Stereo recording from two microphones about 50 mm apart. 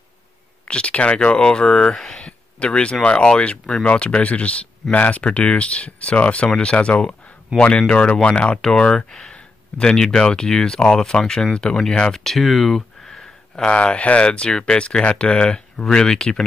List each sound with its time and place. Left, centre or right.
0.7 s speech: left; by 12.0 s centre
12.0 s a sound: centre
13.7 s speech: left